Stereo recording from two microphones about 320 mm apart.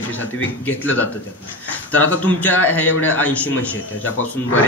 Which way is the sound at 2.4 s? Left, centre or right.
Centre.